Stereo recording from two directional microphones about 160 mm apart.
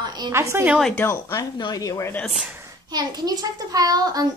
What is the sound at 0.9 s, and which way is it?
Speech, 15° left (ahead or behind).